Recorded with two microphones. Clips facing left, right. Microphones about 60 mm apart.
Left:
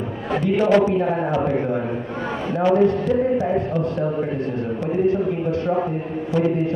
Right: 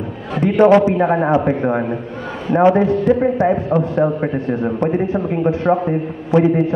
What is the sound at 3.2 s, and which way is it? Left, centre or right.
A man's voice, right.